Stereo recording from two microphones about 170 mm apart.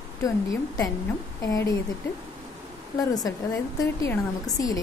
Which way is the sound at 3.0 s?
20° left (ahead or behind).